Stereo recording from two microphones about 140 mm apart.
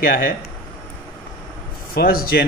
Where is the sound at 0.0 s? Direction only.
90° left.